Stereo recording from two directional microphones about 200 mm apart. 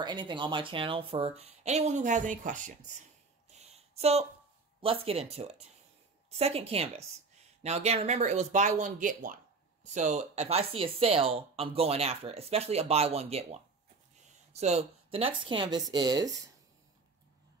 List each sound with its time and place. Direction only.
0.0 s speech: 25° right (ahead or behind); by 2.7 s 40° right (ahead or behind)
3.4 s a sound: 35° right (ahead or behind)
4.8 s speech: 30° right (ahead or behind)